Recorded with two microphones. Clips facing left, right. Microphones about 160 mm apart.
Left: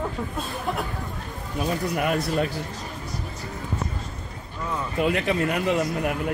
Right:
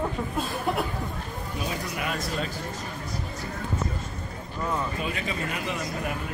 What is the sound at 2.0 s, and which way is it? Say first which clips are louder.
Speech: left 7 dB; 55° left (ahead or behind).